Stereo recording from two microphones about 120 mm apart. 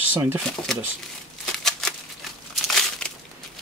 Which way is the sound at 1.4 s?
5° left (ahead or behind).